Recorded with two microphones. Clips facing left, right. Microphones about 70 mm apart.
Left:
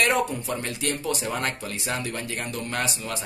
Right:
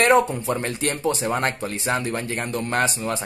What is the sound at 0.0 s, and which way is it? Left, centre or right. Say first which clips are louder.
Speech: right 6 dB; right.